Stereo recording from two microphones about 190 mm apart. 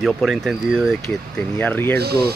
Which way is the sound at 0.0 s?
Centre (ahead or behind).